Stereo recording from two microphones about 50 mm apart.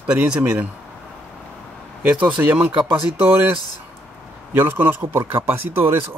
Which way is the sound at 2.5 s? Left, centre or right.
Right.